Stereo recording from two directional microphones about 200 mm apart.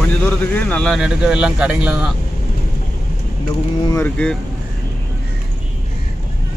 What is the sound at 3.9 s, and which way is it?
Speech, 10° left (ahead or behind).